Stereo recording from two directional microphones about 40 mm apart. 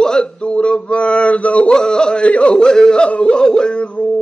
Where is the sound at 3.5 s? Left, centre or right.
Left.